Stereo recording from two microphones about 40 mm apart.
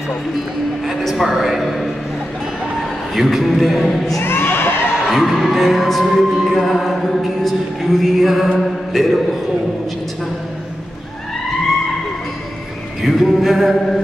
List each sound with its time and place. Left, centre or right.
0.8 s a man's voice: centre
3.2 s music: centre
4.2 s a sound: left
5.1 s music: centre
13.0 s music: centre